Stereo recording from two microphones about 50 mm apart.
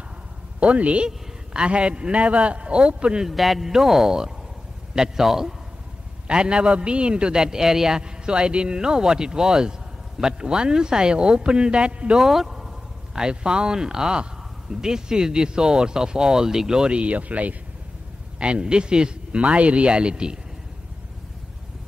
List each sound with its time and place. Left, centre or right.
0.6 s a man's voice: right
3.3 s a man's voice: centre
6.2 s a man's voice: centre
12.2 s a man's voice: centre; by 17.6 s right
18.4 s a man's voice: centre